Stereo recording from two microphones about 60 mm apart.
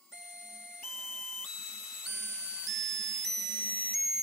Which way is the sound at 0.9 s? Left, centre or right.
Centre.